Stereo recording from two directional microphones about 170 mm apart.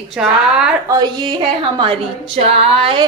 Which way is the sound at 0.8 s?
25° right (ahead or behind).